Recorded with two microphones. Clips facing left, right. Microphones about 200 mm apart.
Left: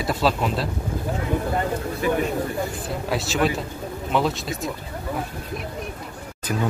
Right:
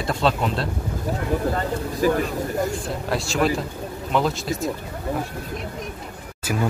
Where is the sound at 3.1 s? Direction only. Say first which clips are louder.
Right 1 dB; centre (ahead or behind).